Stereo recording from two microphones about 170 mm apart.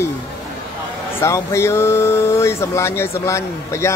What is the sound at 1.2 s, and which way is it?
Speech, 15° left (ahead or behind).